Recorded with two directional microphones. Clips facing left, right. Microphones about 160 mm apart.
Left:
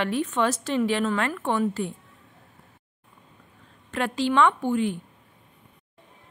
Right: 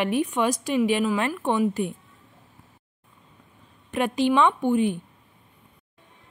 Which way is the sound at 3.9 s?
15° right (ahead or behind).